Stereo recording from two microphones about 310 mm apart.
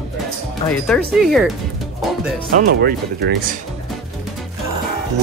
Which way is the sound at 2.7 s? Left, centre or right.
Right.